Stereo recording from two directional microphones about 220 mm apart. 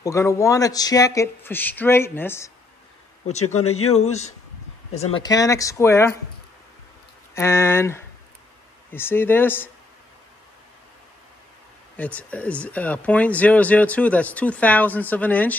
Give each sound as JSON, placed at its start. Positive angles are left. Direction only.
{"t": 0.0, "sound": "speech", "side_deg": 15}
{"t": 3.4, "sound": "speech", "side_deg": 75}
{"t": 4.9, "sound": "speech", "side_deg": 30}
{"t": 5.2, "sound": "speech", "side_deg": 15}
{"t": 7.3, "sound": "speech", "side_deg": 10}
{"t": 12.0, "sound": "speech", "side_deg": 5}